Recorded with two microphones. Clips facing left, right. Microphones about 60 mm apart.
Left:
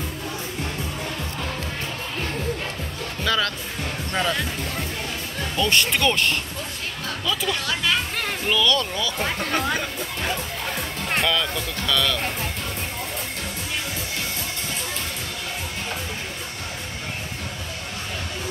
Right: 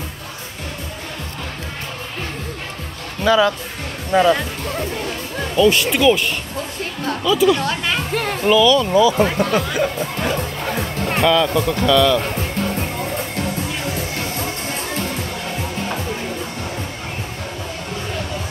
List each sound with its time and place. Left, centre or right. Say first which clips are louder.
3.3 s speech: right 9 dB; centre
4.1 s music: right 10 dB; centre
5.6 s speech: right 7 dB; centre
7.6 s speech: right 3 dB; right
8.1 s speech: right 8 dB; centre
11.1 s speech: right 8 dB; centre